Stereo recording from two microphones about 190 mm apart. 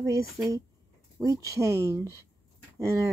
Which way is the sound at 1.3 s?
15° right (ahead or behind).